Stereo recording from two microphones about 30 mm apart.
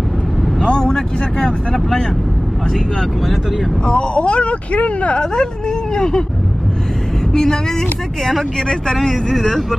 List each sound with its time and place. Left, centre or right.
0.7 s speech: left
3.8 s speech: left
5.2 s speech: left
7.3 s speech: centre